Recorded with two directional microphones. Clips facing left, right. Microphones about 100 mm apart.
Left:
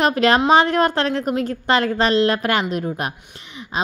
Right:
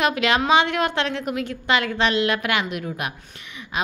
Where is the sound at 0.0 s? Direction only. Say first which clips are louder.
Left 5 dB; 40° left (ahead or behind).